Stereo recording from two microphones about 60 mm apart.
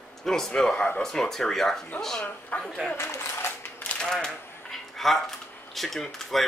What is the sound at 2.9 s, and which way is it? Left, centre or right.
Speech, left.